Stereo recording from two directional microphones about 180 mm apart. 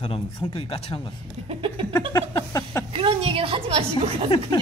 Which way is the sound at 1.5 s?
30° right (ahead or behind).